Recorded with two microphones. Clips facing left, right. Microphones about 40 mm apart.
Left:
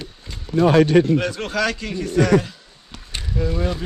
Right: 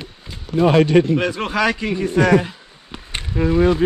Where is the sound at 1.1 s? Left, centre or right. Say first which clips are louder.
Right 2 dB; centre.